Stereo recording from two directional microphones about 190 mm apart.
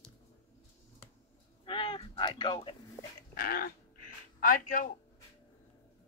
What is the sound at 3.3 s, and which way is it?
Dog, 50° left (ahead or behind).